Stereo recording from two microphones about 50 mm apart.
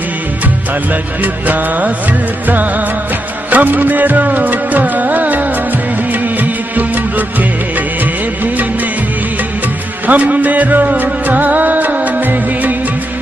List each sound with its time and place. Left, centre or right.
1.2 s music: right
3.4 s music: right
6.4 s music: right
10.0 s music: right